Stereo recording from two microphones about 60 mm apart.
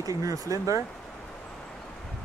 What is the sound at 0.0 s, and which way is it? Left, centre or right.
Speech, right.